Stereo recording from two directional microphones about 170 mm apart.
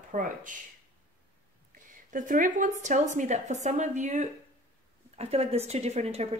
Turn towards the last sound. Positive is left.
turn(degrees=-40)  # may be behind; listen again after turning